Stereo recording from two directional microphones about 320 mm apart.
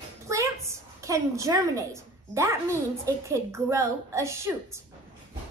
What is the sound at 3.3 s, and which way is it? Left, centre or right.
A woman's voice, centre.